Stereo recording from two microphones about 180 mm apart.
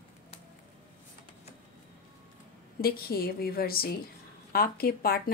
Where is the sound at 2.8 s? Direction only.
60° left (ahead or behind).